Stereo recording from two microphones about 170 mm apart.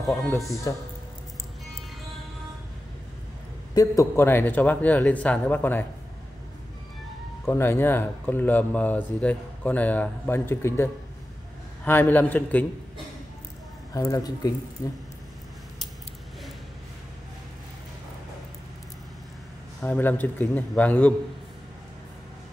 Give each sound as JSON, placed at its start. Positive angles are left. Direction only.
{"t": 0.2, "sound": "speech", "side_deg": 15}
{"t": 3.7, "sound": "speech", "side_deg": 20}
{"t": 7.4, "sound": "speech", "side_deg": 15}
{"t": 13.9, "sound": "speech", "side_deg": 20}
{"t": 19.8, "sound": "speech", "side_deg": 10}